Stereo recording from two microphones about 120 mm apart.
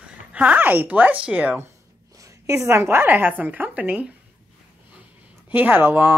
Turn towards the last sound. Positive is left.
turn(degrees=-15)  # may be behind; listen again after turning